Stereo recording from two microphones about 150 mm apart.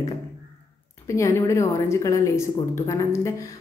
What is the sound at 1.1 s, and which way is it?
Speech, 20° left (ahead or behind).